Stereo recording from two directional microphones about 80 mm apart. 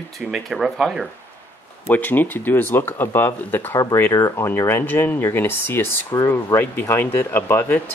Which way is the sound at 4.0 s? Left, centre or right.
Left.